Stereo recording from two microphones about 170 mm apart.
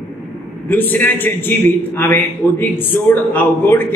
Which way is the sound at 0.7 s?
10° left (ahead or behind).